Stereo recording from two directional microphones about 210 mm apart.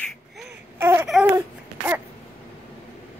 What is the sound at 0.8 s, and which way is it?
Baby cry, 10° right (ahead or behind).